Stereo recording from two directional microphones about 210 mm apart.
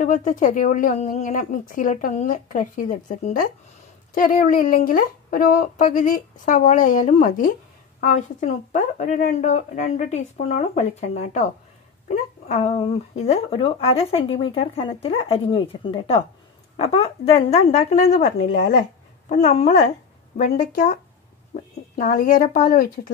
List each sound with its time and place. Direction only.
0.0 s a woman's voice: 35° left (ahead or behind)